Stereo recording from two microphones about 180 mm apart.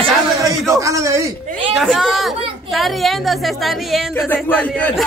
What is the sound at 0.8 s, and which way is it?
Speech, 15° right (ahead or behind).